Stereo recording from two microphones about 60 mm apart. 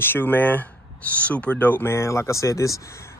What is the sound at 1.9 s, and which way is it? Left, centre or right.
Speech, left.